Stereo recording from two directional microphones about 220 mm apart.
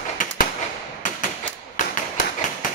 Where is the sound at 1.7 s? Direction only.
35° left (ahead or behind).